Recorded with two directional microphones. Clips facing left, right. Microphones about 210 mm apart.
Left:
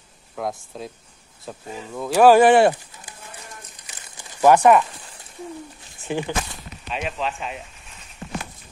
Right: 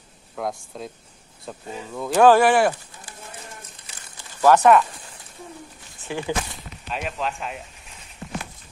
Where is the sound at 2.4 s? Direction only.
25° left (ahead or behind).